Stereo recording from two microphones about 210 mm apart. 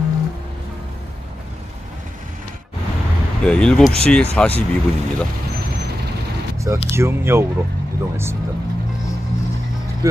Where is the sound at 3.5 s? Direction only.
5° left (ahead or behind).